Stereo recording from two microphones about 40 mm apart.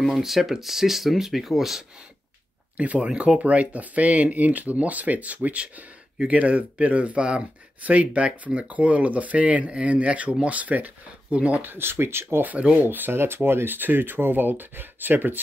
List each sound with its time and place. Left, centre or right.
0.0 s speech: centre
3.0 s speech: right
8.3 s speech: right
8.6 s speech: right
11.6 s speech: right
12.7 s speech: right
13.5 s speech: right
13.7 s speech: right